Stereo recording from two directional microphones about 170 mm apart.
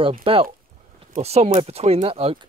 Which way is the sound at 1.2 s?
40° right (ahead or behind).